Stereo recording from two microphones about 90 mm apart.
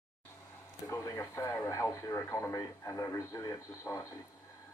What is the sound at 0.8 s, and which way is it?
Speech, 35° left (ahead or behind).